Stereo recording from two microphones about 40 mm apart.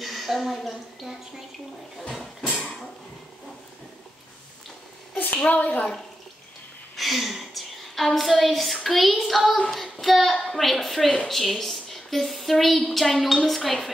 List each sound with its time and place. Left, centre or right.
0.0 s a woman's voice: centre
2.4 s a sound: left
5.5 s a woman's voice: left
7.0 s a woman's voice: centre